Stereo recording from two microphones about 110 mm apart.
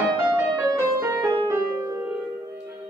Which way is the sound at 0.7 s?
25° right (ahead or behind).